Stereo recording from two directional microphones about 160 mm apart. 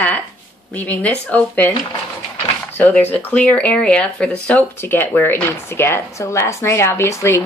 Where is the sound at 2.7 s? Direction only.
10° left (ahead or behind).